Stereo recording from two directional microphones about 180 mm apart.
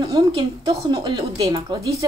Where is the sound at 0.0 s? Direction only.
25° right (ahead or behind).